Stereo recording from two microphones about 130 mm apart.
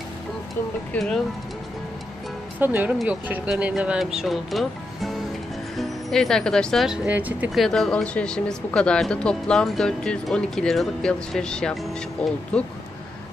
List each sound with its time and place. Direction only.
0.9 s speech: 5° left (ahead or behind)
2.6 s speech: 10° right (ahead or behind)
7.1 s speech: 10° right (ahead or behind)
7.5 s speech: centre (ahead or behind)